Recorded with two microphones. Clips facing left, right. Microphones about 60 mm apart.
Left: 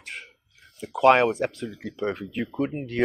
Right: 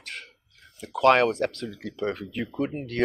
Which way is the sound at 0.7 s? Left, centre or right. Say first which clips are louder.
Left 1 dB; centre.